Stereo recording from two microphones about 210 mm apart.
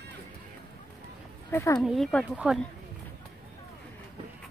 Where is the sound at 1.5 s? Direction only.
15° left (ahead or behind).